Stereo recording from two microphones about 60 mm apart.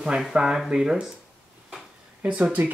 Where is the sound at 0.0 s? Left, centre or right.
Centre.